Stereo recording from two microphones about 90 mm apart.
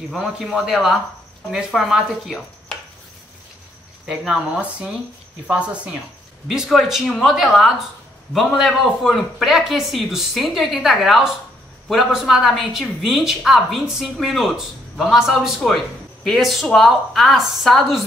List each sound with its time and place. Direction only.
0.1 s a man's voice: centre (ahead or behind)
4.0 s a man's voice: 5° right (ahead or behind)
4.6 s speech: 15° right (ahead or behind)
6.4 s a man's voice: centre (ahead or behind)